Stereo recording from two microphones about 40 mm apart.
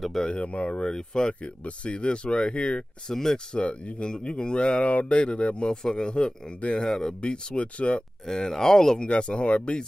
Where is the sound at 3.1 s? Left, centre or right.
Centre.